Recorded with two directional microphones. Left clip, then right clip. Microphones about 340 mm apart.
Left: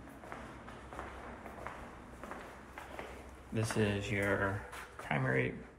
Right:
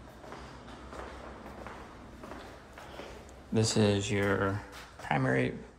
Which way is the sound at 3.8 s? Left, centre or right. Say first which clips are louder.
Right 2 dB; centre.